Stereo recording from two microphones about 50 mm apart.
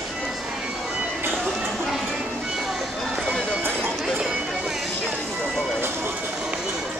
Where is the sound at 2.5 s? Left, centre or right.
Centre.